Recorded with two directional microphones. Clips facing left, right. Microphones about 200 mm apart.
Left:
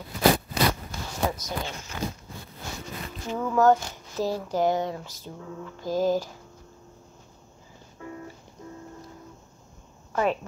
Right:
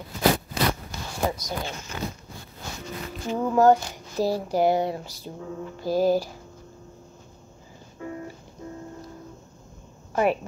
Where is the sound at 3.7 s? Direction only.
10° right (ahead or behind).